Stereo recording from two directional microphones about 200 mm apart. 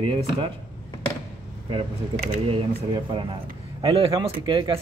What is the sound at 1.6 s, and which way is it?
Speech, 30° right (ahead or behind).